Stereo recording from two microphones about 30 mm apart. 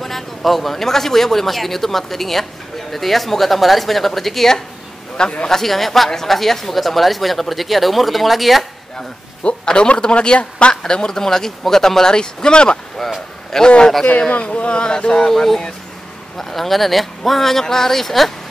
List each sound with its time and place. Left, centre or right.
0.0 s a man's voice: centre
5.5 s a man's voice: centre
8.9 s a sound: left
9.8 s speech: left
10.8 s speech: left
13.0 s speech: centre
13.7 s speech: left
15.3 s a man's voice: centre